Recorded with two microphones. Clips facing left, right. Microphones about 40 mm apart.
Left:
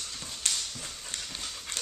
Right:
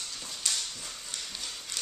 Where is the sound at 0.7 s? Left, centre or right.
Left.